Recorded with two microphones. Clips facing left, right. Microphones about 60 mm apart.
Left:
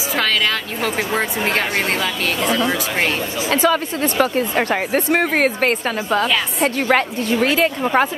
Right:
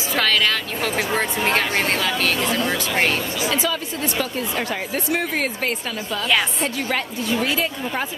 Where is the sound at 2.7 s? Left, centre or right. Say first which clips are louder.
Left 1 dB; centre.